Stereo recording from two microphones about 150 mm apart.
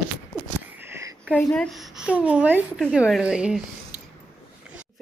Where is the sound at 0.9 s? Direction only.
20° right (ahead or behind).